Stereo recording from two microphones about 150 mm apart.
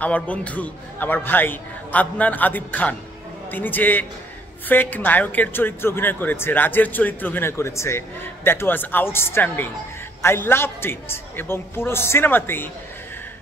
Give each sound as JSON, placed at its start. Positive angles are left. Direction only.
{"t": 0.0, "sound": "a woman's voice", "side_deg": 10}